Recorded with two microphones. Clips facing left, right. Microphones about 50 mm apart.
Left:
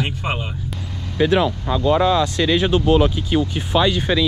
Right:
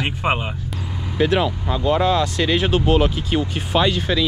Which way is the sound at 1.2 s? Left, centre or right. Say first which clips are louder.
Left 2 dB; left.